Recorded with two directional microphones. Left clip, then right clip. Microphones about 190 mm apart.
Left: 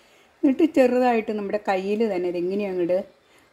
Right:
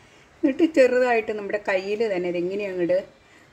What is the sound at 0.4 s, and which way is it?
Speech, 35° left (ahead or behind).